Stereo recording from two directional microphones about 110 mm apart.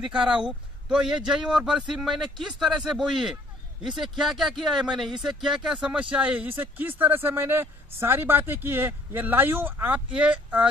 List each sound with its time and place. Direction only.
0.0 s speech: 10° right (ahead or behind)